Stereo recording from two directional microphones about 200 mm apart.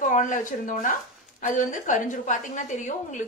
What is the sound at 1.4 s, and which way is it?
Speech, 40° left (ahead or behind).